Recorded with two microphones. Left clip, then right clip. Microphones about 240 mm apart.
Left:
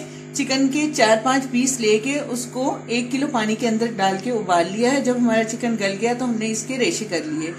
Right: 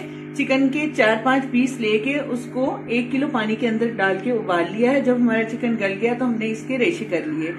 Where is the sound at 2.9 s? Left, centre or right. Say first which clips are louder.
Even; left.